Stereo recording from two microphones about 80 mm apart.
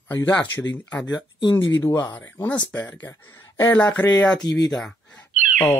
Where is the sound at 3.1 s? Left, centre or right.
Left.